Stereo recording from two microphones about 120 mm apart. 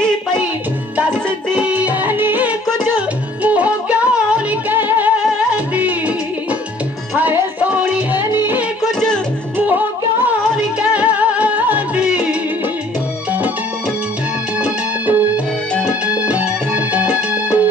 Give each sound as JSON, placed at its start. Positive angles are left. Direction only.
{"t": 1.6, "sound": "music", "side_deg": -10}
{"t": 7.2, "sound": "music", "side_deg": -15}
{"t": 9.7, "sound": "music", "side_deg": -15}
{"t": 14.6, "sound": "music", "side_deg": -15}